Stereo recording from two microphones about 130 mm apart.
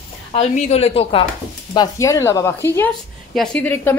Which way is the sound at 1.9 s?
25° left (ahead or behind).